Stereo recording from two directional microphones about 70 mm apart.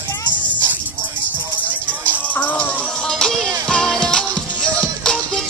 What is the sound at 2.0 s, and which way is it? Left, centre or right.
Music, left.